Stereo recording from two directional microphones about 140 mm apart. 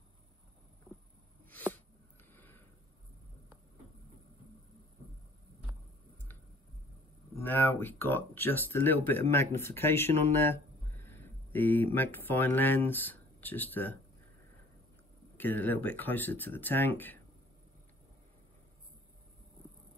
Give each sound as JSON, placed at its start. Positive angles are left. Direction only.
{"t": 1.5, "sound": "a sound", "side_deg": 10}
{"t": 7.3, "sound": "speech", "side_deg": 15}
{"t": 15.3, "sound": "speech", "side_deg": 15}